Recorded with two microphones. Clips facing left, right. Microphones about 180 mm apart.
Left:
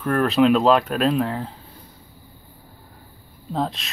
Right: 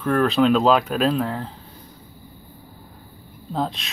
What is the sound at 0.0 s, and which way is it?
Speech, centre (ahead or behind).